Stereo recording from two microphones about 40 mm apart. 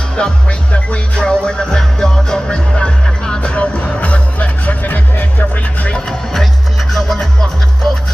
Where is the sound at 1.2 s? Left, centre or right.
Left.